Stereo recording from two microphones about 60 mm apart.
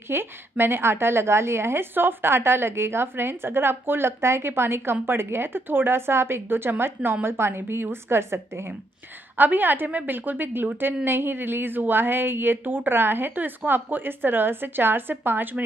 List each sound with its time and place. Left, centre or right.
0.1 s a woman's voice: right
9.4 s a woman's voice: right